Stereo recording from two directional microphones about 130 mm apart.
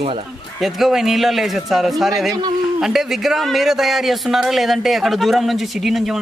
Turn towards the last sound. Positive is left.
turn(degrees=0)  # may be behind; listen again after turning